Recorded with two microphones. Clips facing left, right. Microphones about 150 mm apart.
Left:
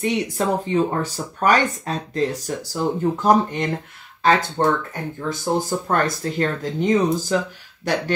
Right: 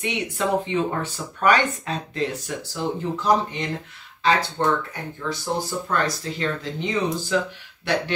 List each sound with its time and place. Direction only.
0.7 s speech: 40° left (ahead or behind)